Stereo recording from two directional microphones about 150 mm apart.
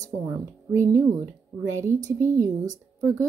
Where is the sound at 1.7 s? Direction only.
20° right (ahead or behind).